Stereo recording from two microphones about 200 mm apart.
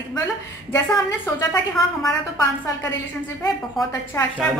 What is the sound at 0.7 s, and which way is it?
Speech, 15° left (ahead or behind).